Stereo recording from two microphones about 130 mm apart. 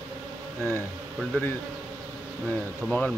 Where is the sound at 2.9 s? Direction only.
5° left (ahead or behind).